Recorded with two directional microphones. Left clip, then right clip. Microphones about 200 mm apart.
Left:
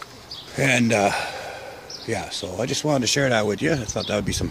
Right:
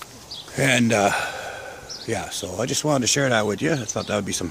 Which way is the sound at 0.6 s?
10° right (ahead or behind).